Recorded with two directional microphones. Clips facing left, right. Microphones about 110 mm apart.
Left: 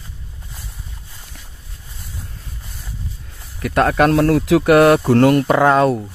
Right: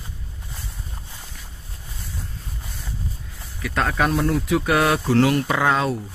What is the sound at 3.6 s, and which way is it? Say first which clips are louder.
Speech: left 7 dB; 55° left (ahead or behind).